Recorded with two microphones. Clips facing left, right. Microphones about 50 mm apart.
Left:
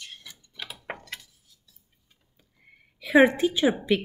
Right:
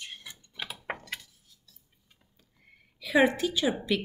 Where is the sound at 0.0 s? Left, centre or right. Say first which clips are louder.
Right 1 dB; right.